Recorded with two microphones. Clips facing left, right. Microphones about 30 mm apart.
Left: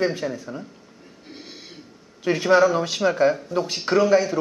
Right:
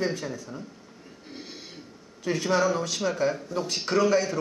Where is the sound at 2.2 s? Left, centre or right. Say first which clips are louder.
Left 7 dB; left.